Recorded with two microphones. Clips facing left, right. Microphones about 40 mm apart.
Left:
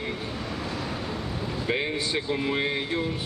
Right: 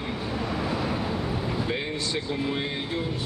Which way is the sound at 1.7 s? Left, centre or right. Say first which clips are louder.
Left 2 dB; centre.